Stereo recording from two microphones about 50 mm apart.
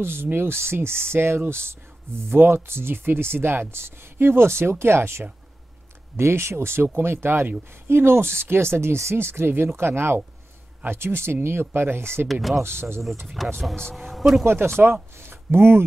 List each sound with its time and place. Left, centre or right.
0.0 s speech: right
12.3 s speech: centre
12.6 s speech: right
13.4 s speech: centre
14.4 s speech: right